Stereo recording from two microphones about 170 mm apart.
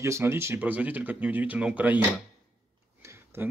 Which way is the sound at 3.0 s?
15° right (ahead or behind).